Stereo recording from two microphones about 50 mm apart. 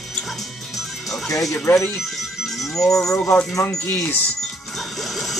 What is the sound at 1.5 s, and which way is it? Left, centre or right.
Speech, left.